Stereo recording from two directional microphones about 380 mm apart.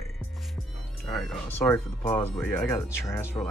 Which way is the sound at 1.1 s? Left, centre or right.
Centre.